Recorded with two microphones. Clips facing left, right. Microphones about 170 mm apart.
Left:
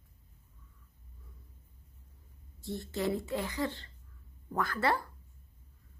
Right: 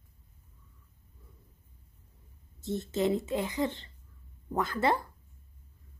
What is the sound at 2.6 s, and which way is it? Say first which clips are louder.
Speech: right 5 dB; 20° right (ahead or behind).